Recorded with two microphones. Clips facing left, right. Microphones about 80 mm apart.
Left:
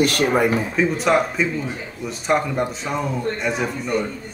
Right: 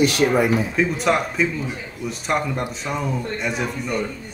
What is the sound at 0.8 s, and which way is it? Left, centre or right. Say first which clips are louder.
Speech: left 5 dB; centre.